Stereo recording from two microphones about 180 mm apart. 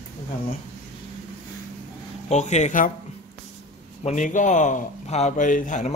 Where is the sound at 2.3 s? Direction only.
40° left (ahead or behind).